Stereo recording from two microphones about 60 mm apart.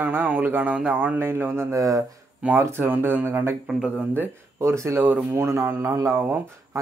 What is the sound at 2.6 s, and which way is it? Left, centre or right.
Speech, right.